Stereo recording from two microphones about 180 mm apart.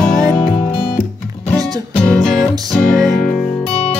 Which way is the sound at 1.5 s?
20° right (ahead or behind).